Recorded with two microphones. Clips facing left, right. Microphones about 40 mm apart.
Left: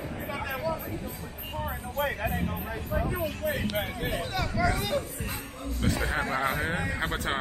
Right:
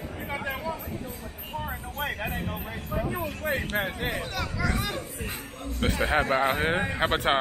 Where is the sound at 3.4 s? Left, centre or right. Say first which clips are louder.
Right 3 dB; right.